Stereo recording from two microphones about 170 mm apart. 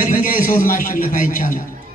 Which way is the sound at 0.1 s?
50° left (ahead or behind).